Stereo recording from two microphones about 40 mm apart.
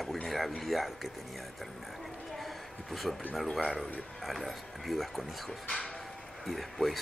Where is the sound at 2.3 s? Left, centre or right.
Centre.